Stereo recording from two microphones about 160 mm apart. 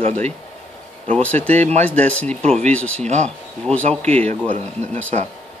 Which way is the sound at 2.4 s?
45° right (ahead or behind).